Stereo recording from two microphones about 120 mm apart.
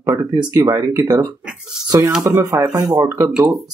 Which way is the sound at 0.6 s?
30° right (ahead or behind).